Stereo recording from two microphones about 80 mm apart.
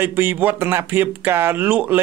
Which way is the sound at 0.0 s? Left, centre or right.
Right.